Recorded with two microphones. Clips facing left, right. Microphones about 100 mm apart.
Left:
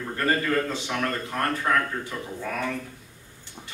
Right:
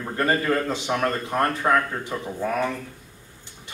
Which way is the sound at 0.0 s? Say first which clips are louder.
Right 2 dB; 25° right (ahead or behind).